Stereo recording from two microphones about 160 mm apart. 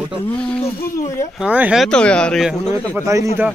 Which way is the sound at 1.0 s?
20° left (ahead or behind).